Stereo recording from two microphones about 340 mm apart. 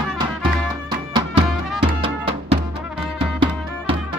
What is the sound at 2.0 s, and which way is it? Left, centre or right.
Music, centre.